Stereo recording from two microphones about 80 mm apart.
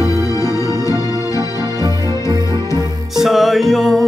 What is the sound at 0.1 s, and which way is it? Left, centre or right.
Music, left.